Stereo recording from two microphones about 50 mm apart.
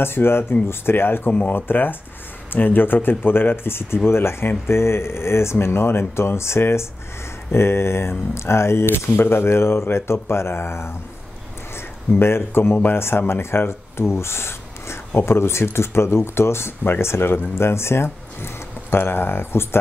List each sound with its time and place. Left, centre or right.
0.0 s speech: left
12.1 s speech: left